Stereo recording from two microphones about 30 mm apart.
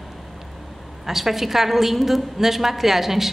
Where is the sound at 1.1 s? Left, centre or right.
Centre.